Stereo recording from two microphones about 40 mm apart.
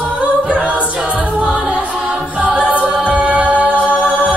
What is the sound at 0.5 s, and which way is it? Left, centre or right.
A capella, right.